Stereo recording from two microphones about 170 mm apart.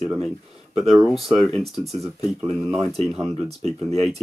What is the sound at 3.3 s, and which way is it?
Speech, 40° right (ahead or behind).